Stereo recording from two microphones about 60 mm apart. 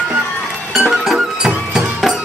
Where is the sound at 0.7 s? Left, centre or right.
Centre.